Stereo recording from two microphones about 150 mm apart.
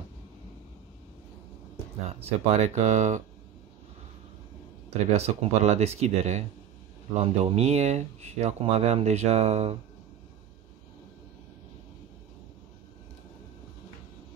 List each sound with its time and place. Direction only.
2.0 s speech: 50° right (ahead or behind)
5.1 s speech: 45° right (ahead or behind)